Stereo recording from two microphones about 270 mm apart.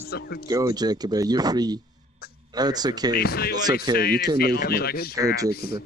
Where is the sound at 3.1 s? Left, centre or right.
Left.